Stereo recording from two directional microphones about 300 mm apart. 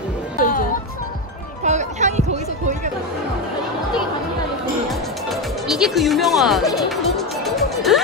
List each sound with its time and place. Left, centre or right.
1.6 s music: right
5.3 s music: centre